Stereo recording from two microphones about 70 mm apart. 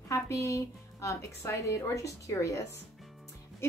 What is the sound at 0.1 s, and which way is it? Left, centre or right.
A woman's voice, left.